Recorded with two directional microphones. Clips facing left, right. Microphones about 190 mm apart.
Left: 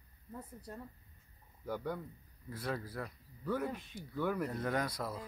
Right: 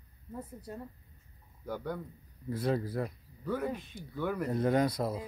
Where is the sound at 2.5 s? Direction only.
25° right (ahead or behind).